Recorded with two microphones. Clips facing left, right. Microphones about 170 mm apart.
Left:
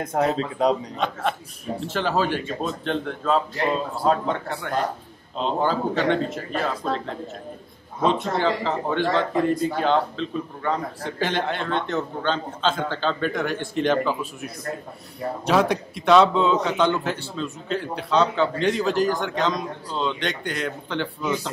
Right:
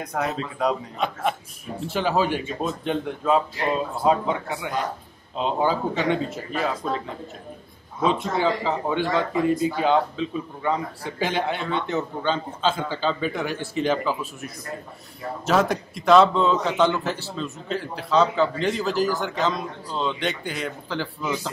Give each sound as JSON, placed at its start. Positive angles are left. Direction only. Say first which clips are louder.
{"t": 0.0, "sound": "speech", "louder": "left 5 dB", "side_deg": 30}
{"t": 0.9, "sound": "a man's voice", "louder": "even", "side_deg": -5}
{"t": 8.0, "sound": "a man's voice", "louder": "left 1 dB", "side_deg": -5}
{"t": 15.7, "sound": "a man's voice", "louder": "even", "side_deg": 0}